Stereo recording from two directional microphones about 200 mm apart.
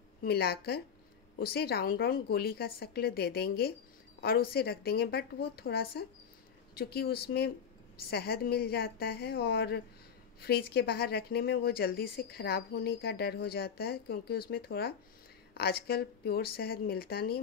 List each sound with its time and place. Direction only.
0.2 s speech: 50° left (ahead or behind)